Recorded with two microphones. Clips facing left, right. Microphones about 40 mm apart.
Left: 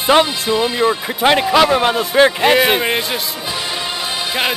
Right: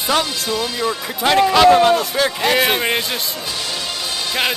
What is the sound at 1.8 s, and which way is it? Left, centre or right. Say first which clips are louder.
Speech: left 2 dB; left.